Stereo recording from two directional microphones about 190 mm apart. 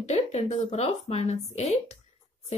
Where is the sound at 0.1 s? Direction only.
35° left (ahead or behind).